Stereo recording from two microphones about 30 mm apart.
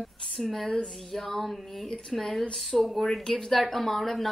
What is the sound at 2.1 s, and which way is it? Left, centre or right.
A woman's voice, centre.